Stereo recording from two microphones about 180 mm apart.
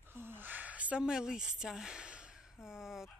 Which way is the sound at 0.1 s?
10° right (ahead or behind).